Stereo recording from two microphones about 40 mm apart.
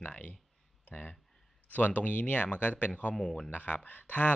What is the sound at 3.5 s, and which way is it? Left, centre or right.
Speech, left.